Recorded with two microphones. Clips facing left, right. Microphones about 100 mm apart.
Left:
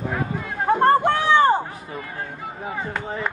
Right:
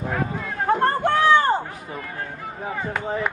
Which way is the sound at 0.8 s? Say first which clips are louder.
Left 1 dB; 20° left (ahead or behind).